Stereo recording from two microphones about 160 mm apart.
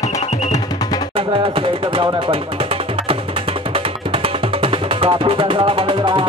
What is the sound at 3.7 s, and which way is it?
Music, 35° right (ahead or behind).